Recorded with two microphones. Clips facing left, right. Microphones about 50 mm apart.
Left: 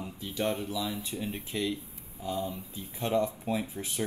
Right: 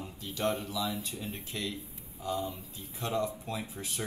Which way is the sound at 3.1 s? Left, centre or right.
Centre.